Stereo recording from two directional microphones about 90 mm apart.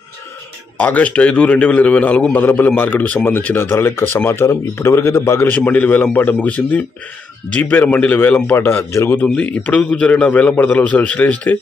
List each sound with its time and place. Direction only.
0.7 s a man's voice: 15° left (ahead or behind)
5.5 s a man's voice: 20° left (ahead or behind)
9.2 s a man's voice: 15° left (ahead or behind)